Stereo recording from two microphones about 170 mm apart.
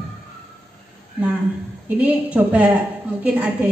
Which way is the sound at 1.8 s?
10° right (ahead or behind).